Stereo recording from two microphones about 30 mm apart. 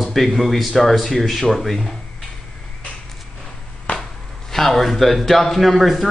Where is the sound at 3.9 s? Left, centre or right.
Left.